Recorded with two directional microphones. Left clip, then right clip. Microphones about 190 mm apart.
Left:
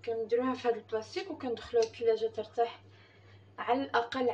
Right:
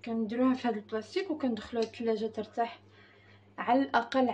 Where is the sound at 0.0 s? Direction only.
60° right (ahead or behind).